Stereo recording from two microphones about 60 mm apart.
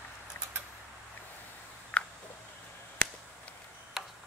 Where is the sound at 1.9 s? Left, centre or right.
Centre.